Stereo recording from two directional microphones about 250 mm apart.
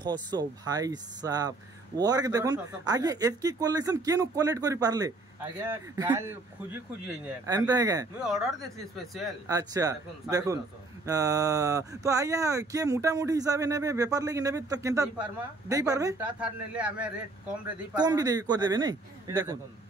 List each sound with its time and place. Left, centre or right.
0.0 s speech: centre
8.6 s speech: centre
9.5 s speech: centre
17.9 s speech: centre